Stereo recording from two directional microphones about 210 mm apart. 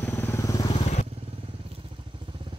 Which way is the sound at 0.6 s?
30° left (ahead or behind).